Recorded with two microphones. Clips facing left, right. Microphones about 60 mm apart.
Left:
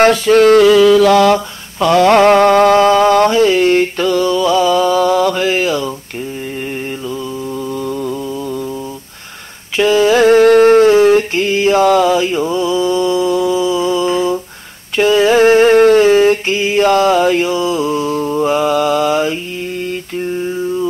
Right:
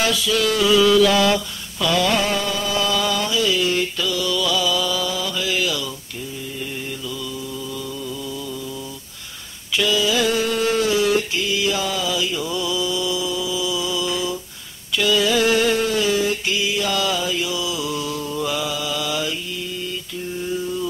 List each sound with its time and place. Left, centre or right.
0.0 s mantra: left
7.7 s mantra: left
9.8 s mantra: left
11.8 s mantra: left